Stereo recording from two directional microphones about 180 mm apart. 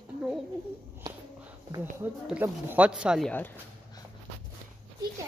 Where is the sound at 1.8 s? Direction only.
10° right (ahead or behind).